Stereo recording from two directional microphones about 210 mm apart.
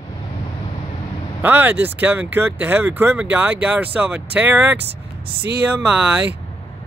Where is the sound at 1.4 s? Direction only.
10° right (ahead or behind).